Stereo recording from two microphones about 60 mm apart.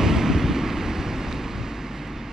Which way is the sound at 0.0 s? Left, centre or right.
Centre.